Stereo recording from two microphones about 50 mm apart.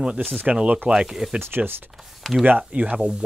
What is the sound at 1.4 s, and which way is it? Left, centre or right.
Speech, right.